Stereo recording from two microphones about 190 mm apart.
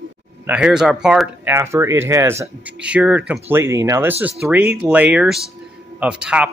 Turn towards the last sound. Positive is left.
turn(degrees=-5)  # may be behind; listen again after turning